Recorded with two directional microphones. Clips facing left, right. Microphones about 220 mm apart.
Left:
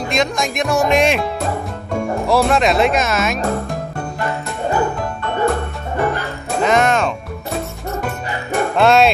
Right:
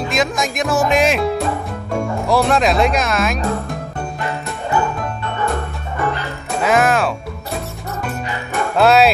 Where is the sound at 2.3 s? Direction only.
Centre (ahead or behind).